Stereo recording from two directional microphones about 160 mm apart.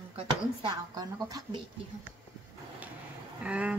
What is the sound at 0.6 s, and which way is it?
A woman's voice, 30° right (ahead or behind).